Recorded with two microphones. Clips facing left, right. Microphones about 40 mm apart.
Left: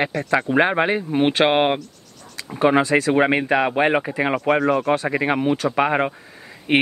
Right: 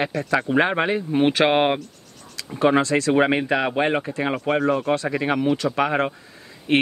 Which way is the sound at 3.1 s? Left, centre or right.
Centre.